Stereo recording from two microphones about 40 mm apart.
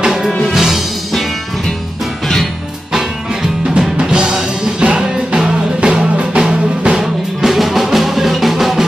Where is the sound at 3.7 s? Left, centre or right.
Centre.